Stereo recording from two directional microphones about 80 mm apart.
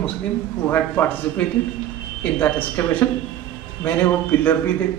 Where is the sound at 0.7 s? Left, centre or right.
Left.